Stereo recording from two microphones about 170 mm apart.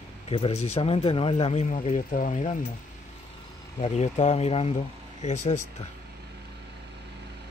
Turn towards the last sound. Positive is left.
turn(degrees=40)  # may be behind; listen again after turning